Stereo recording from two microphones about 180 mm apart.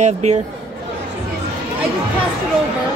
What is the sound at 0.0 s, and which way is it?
Speech, 40° right (ahead or behind).